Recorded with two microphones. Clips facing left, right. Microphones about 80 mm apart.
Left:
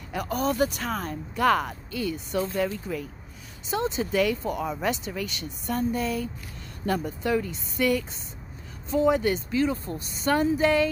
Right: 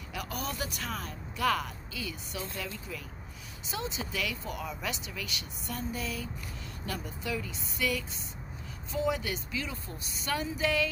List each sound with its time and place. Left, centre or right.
0.1 s speech: left